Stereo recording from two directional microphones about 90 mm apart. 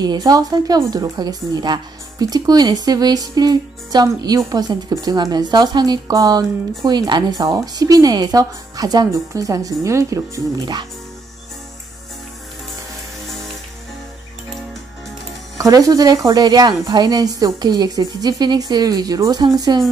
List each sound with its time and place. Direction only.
0.0 s a woman's voice: 50° right (ahead or behind)
10.6 s a woman's voice: 55° right (ahead or behind)
15.5 s a woman's voice: 40° right (ahead or behind)